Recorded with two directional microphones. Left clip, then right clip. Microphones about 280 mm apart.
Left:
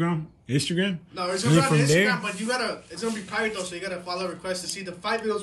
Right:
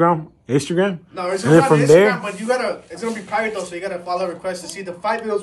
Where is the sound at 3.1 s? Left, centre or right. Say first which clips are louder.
Right 7 dB; centre.